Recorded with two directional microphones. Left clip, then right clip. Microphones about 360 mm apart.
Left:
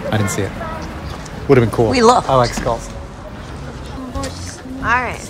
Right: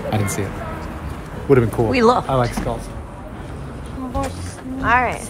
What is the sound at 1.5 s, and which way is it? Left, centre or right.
Speech, left.